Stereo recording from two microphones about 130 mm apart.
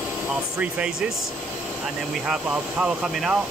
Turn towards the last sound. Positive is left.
turn(degrees=-5)  # may be behind; listen again after turning